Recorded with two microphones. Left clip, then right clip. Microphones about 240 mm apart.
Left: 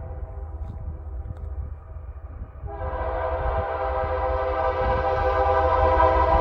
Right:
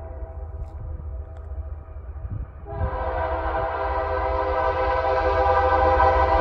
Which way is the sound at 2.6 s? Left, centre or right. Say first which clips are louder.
Right 1 dB; right.